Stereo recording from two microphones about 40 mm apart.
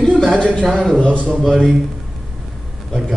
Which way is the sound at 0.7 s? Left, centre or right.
Centre.